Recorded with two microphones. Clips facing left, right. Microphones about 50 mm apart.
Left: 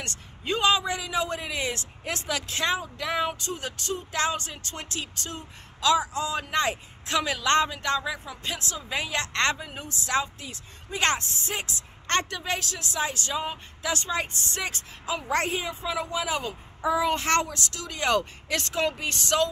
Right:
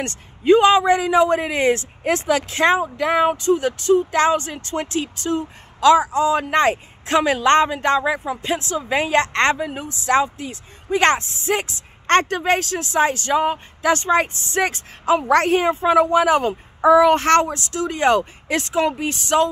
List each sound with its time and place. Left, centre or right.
0.5 s a man's voice: right
15.2 s a woman's voice: right
15.6 s a child's voice: right
17.5 s speech: right